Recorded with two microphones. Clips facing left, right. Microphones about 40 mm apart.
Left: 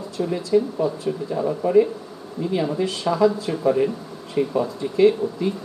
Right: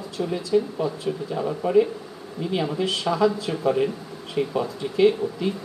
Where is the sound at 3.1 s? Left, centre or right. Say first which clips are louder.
Left 3 dB; centre.